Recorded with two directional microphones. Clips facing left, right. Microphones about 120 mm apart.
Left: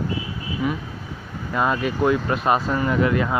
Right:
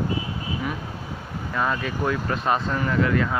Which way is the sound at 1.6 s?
20° left (ahead or behind).